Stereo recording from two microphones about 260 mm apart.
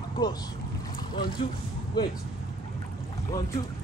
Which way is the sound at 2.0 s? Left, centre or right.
Centre.